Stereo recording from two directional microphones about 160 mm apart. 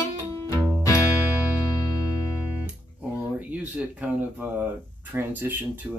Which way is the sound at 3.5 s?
10° right (ahead or behind).